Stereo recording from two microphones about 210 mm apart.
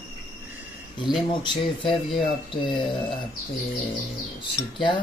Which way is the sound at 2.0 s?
Centre (ahead or behind).